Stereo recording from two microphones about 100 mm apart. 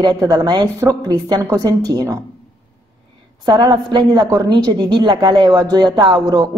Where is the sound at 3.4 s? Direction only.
50° right (ahead or behind).